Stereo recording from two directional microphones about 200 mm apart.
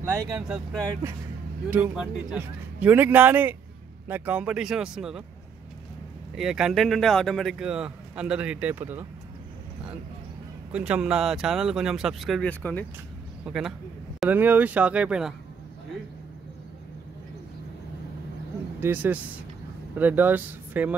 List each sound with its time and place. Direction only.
0.0 s a man's voice: 15° right (ahead or behind)
1.7 s a man's voice: 5° right (ahead or behind)
6.3 s speech: centre (ahead or behind)
10.7 s speech: 5° right (ahead or behind)
13.5 s a man's voice: 5° right (ahead or behind)
18.8 s a man's voice: 10° right (ahead or behind)